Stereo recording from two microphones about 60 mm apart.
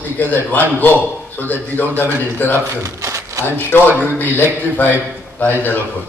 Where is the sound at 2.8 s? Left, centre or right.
Right.